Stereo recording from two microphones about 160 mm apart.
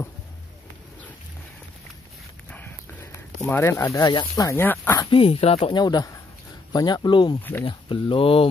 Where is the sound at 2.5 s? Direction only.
10° left (ahead or behind).